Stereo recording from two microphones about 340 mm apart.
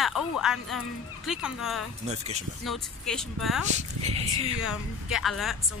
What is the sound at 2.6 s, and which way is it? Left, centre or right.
Speech, centre.